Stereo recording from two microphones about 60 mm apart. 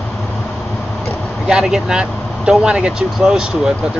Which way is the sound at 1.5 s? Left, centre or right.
Centre.